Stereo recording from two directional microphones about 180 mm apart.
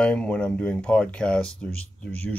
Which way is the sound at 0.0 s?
5° left (ahead or behind).